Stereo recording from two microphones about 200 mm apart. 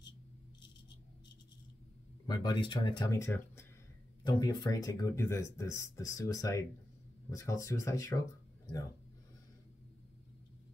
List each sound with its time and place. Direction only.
2.2 s speech: 20° left (ahead or behind)